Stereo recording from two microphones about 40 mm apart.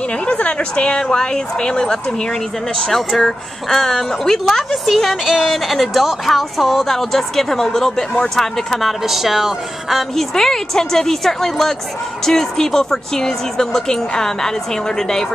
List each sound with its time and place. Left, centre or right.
0.4 s a woman's voice: left
2.9 s speech: centre
4.8 s speech: centre
9.0 s speech: centre
10.1 s speech: centre